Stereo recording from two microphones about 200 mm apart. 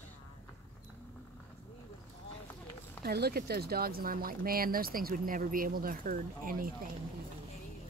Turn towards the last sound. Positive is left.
turn(degrees=-45)  # may be behind; listen again after turning